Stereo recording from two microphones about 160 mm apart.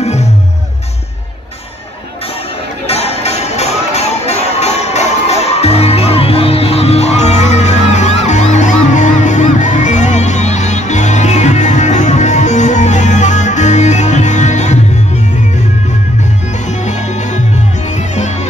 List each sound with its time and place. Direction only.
2.9 s music: 40° left (ahead or behind)
16.8 s music: 45° left (ahead or behind)